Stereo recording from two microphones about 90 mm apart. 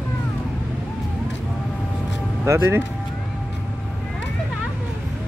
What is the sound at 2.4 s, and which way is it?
Speech, 30° right (ahead or behind).